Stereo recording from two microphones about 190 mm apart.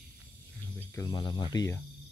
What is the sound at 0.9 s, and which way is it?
Speech, 20° left (ahead or behind).